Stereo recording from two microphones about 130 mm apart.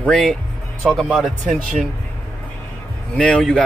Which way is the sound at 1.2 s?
90° right.